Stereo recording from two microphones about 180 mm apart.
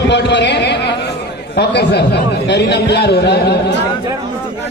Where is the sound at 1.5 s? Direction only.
70° left (ahead or behind).